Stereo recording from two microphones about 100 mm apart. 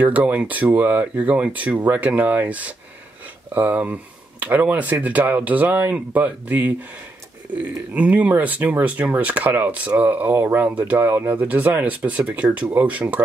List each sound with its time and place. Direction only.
0.0 s speech: 15° right (ahead or behind)